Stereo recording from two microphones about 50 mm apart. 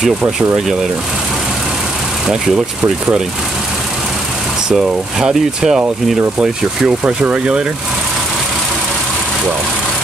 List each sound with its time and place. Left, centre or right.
0.0 s speech: centre
4.6 s speech: centre
7.1 s speech: right